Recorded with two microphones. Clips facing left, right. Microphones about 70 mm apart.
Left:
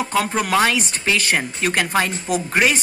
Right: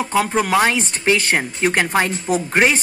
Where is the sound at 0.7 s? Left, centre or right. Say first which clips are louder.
Right 3 dB; right.